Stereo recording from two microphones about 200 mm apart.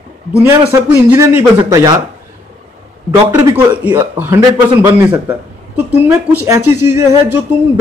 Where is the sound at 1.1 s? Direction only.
10° right (ahead or behind).